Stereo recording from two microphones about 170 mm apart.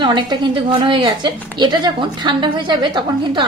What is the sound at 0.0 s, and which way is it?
A woman's voice, 25° right (ahead or behind).